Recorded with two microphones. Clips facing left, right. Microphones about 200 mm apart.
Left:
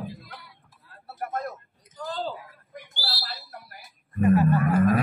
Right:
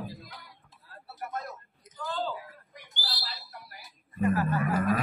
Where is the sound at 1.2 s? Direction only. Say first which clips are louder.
Left 6 dB; 55° left (ahead or behind).